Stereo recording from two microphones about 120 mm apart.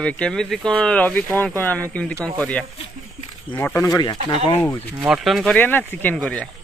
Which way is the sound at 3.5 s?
15° left (ahead or behind).